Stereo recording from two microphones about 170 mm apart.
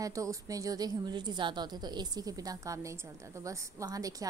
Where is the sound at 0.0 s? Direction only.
20° right (ahead or behind).